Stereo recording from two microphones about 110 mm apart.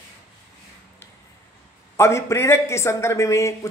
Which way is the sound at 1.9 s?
25° left (ahead or behind).